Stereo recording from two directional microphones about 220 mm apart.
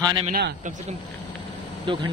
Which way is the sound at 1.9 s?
20° right (ahead or behind).